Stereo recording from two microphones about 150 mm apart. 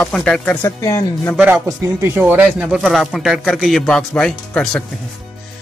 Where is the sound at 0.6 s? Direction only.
20° left (ahead or behind).